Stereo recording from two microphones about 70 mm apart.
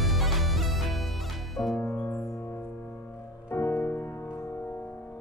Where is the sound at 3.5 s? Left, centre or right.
Left.